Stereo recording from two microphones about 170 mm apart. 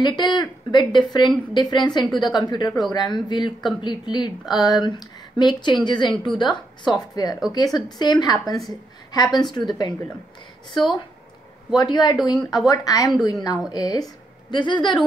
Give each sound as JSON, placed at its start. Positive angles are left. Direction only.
{"t": 0.0, "sound": "speech", "side_deg": 25}
{"t": 11.7, "sound": "a woman's voice", "side_deg": 25}